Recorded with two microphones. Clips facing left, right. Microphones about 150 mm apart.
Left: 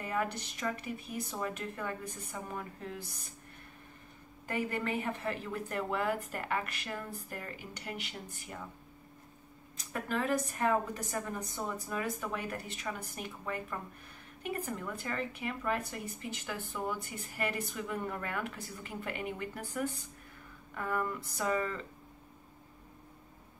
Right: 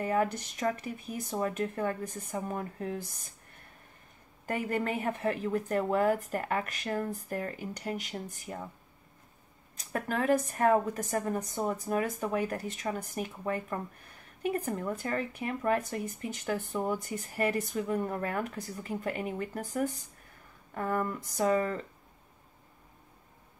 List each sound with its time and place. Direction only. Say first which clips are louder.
0.0 s a woman's voice: right 6 dB; 45° right (ahead or behind)
4.5 s a woman's voice: right 3 dB; 45° right (ahead or behind)
9.9 s a woman's voice: right 5 dB; 50° right (ahead or behind)
20.7 s speech: right 3 dB; 40° right (ahead or behind)